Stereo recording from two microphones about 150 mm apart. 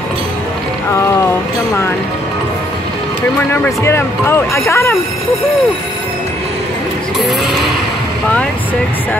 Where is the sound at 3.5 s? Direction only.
15° left (ahead or behind).